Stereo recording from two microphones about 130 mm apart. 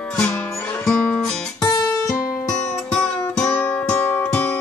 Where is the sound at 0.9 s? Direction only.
5° left (ahead or behind).